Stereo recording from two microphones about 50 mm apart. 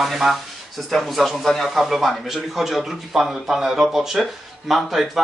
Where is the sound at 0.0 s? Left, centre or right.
Centre.